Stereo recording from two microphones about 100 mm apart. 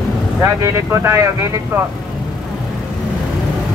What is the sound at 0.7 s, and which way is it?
Speech, 25° right (ahead or behind).